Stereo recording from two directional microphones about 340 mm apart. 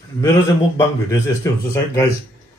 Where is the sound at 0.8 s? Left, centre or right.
Centre.